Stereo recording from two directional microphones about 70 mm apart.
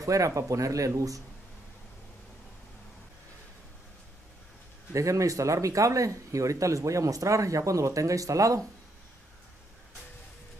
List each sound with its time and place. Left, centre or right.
0.0 s speech: right
4.9 s speech: right